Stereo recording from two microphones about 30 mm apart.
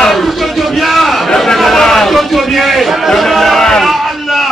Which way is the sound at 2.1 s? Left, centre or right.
Centre.